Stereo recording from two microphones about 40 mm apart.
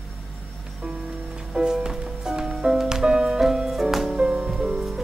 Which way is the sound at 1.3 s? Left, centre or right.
Right.